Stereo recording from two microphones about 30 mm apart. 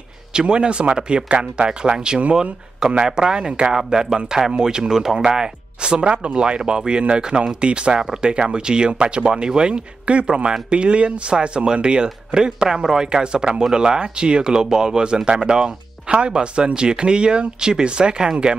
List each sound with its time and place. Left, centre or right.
0.3 s speech: right
3.7 s speech: right
15.2 s speech: right